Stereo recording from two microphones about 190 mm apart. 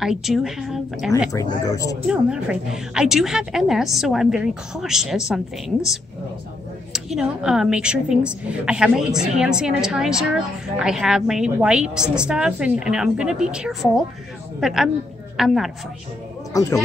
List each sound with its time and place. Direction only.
0.0 s a woman's voice: centre (ahead or behind)
1.3 s speech: 15° left (ahead or behind)
2.0 s a woman's voice: 5° right (ahead or behind)
6.9 s a woman's voice: 5° right (ahead or behind)
16.5 s speech: 15° left (ahead or behind)